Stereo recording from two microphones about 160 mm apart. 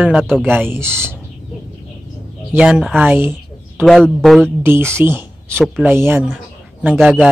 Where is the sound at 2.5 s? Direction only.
5° right (ahead or behind).